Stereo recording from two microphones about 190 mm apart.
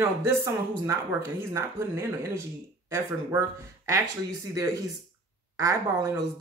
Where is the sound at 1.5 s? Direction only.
15° right (ahead or behind).